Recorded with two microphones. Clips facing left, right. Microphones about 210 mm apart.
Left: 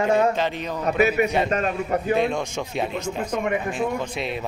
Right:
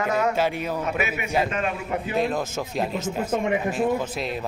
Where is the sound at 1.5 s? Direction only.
40° left (ahead or behind).